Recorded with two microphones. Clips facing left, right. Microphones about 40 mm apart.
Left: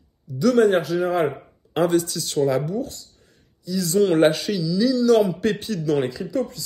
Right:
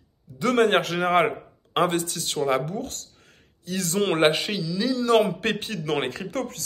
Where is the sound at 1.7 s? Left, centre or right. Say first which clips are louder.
Left 3 dB; right.